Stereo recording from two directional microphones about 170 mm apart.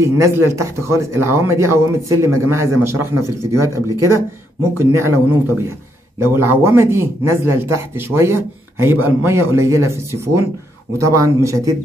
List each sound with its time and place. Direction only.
0.0 s speech: 15° right (ahead or behind)